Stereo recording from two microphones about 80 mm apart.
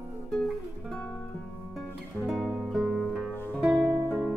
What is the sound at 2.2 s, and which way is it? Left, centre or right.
Music, centre.